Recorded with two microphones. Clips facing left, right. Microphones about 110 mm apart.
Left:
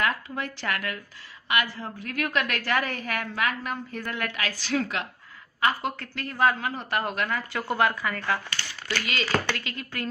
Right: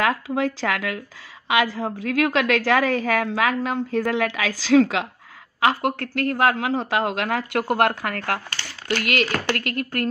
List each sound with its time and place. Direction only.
0.0 s a woman's voice: 90° right
5.6 s a woman's voice: 80° right
7.7 s speech: 65° right (ahead or behind)
8.5 s speech: 55° right (ahead or behind)